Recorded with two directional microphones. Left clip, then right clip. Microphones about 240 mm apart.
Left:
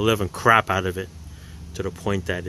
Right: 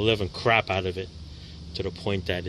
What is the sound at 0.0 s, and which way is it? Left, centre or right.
Speech, left.